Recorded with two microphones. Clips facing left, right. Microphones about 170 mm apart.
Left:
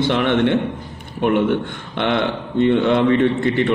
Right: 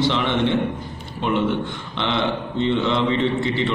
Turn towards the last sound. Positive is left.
turn(degrees=55)  # may be behind; listen again after turning